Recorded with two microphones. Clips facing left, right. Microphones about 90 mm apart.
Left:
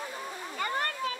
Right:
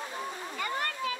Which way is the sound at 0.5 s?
40° left (ahead or behind).